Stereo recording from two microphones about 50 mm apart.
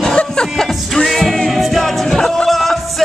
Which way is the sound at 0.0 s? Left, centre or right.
Centre.